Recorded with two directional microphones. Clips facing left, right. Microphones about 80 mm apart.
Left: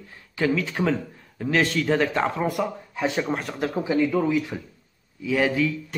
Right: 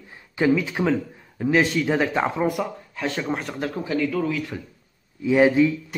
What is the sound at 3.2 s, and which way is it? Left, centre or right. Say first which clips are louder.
Speech: even; centre.